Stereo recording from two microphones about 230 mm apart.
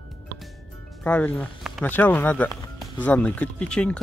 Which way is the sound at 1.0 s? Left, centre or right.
Centre.